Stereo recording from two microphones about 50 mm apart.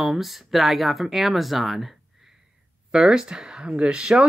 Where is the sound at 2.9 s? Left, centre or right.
Centre.